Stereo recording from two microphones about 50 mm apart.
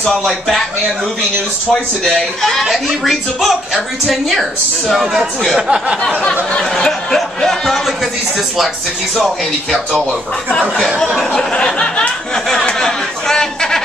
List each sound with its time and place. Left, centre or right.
0.2 s speech: centre
1.7 s a man's voice: centre
5.6 s a sound: right
6.5 s speech: centre
11.1 s a man's voice: centre
12.7 s chatter: centre